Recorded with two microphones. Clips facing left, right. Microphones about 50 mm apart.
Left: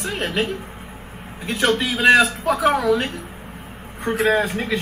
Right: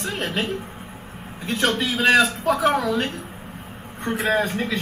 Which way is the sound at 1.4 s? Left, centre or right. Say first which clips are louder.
Left 2 dB; centre.